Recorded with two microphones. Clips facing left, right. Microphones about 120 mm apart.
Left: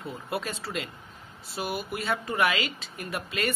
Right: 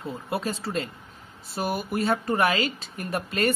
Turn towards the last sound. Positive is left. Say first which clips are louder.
# right 5 dB
turn(degrees=-40)  # may be behind; listen again after turning